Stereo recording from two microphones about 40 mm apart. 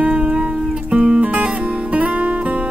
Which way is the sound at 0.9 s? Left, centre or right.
Right.